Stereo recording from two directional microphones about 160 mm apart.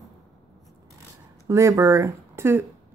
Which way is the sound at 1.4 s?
20° right (ahead or behind).